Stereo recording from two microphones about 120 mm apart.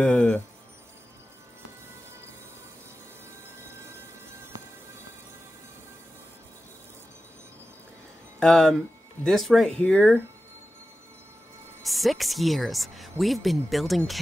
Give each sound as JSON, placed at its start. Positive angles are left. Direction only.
{"t": 0.0, "sound": "speech", "side_deg": 10}
{"t": 8.4, "sound": "speech", "side_deg": 5}
{"t": 11.8, "sound": "speech", "side_deg": 0}